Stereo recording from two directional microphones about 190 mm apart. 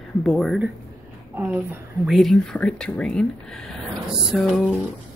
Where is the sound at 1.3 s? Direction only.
10° right (ahead or behind).